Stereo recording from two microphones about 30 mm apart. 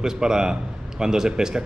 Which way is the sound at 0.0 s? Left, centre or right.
Right.